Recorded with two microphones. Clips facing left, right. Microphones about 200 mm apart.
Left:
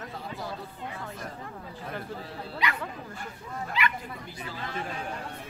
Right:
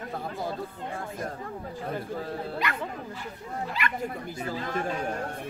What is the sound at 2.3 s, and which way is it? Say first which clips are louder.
Speech: left 1 dB; 50° right (ahead or behind).